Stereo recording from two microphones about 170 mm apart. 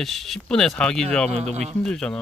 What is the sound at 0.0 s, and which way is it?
A man's voice, centre (ahead or behind).